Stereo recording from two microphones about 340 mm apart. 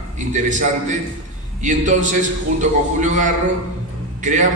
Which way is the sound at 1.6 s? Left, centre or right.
Right.